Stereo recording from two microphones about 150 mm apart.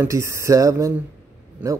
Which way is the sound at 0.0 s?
20° right (ahead or behind).